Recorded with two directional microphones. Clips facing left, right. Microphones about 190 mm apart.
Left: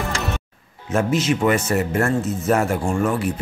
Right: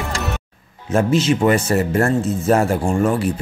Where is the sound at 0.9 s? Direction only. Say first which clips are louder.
Right 3 dB; 30° right (ahead or behind).